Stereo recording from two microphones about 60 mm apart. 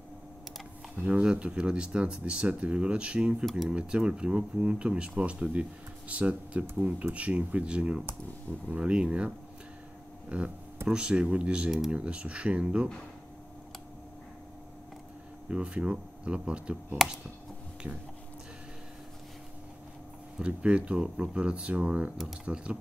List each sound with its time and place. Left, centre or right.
0.9 s speech: right
10.3 s speech: centre
15.5 s speech: centre
20.3 s speech: centre